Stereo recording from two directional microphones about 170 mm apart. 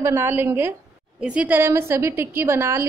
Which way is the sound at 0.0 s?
15° right (ahead or behind).